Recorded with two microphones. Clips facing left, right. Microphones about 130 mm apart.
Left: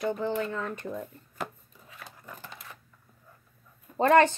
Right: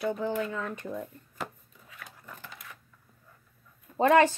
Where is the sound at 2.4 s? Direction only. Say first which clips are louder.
Left 1 dB; 30° left (ahead or behind).